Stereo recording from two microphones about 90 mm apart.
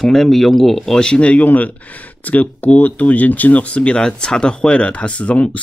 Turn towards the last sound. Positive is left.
turn(degrees=15)  # may be behind; listen again after turning